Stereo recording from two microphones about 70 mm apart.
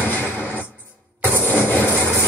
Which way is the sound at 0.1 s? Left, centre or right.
Left.